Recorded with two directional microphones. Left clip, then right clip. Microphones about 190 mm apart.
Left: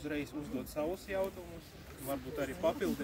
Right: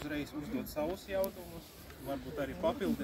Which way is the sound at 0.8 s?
Centre (ahead or behind).